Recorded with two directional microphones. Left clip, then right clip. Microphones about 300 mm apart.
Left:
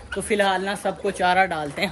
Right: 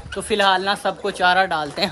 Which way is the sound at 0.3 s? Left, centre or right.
Centre.